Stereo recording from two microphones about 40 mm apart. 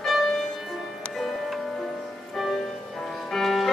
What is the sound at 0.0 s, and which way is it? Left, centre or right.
Music, centre.